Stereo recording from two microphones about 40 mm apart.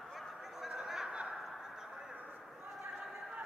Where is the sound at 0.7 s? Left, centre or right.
Centre.